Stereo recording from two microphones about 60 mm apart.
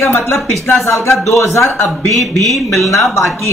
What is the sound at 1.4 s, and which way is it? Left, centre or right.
Speech, left.